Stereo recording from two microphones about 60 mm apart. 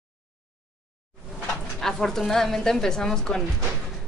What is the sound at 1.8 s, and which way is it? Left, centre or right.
A woman's voice, centre.